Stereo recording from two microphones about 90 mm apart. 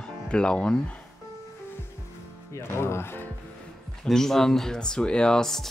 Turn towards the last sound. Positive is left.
turn(degrees=5)  # may be behind; listen again after turning